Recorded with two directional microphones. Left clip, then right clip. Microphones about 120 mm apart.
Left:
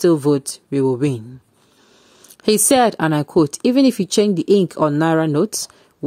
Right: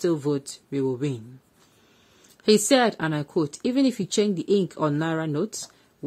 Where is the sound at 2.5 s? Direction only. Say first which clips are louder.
Left 5 dB; 55° left (ahead or behind).